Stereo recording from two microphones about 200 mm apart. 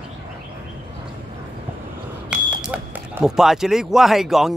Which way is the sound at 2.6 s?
5° right (ahead or behind).